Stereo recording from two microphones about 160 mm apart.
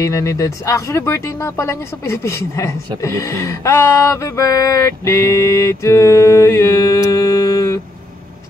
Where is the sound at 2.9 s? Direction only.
20° left (ahead or behind).